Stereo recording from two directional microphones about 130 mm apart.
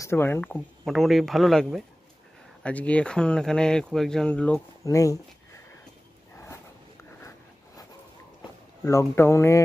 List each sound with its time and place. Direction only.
0.0 s speech: 20° left (ahead or behind)
0.8 s speech: centre (ahead or behind)
4.8 s speech: 25° left (ahead or behind)
6.3 s a sound: 20° left (ahead or behind)
8.8 s speech: 20° left (ahead or behind)